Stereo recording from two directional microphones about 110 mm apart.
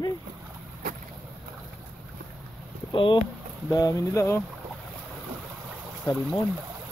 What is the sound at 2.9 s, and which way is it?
Speech, 50° left (ahead or behind).